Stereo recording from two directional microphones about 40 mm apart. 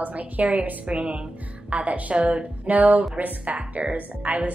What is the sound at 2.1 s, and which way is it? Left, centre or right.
A woman's voice, right.